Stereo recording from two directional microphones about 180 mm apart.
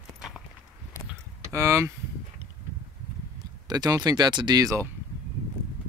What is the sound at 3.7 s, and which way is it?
Speech, 20° right (ahead or behind).